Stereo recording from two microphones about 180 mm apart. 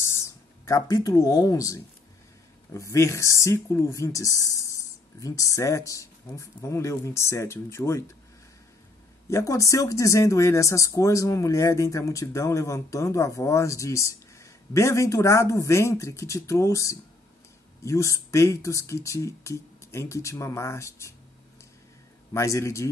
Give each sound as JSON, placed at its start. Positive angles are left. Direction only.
{"t": 0.0, "sound": "speech", "side_deg": 15}
{"t": 9.3, "sound": "speech", "side_deg": 15}
{"t": 22.3, "sound": "speech", "side_deg": 15}